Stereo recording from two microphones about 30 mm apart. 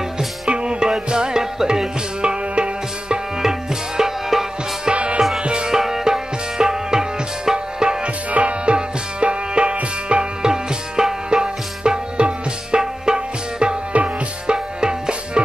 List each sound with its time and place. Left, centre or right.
0.5 s music: right; by 1.9 s centre
2.2 s music: right
3.4 s music: centre
4.9 s music: right
5.7 s tabla: centre
8.3 s music: right
8.7 s tabla: right
10.5 s music: right